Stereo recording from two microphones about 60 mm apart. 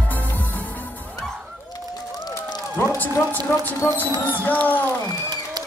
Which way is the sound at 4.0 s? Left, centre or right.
Left.